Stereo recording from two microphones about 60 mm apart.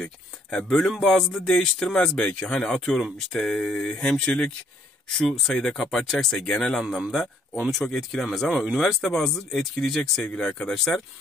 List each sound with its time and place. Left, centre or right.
0.0 s speech: centre
5.4 s speech: centre
6.8 s speech: centre